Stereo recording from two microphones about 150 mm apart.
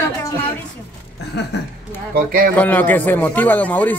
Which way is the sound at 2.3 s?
70° right (ahead or behind).